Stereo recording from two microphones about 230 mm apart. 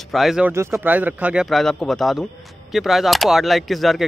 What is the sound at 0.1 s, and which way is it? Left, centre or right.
Speech, centre.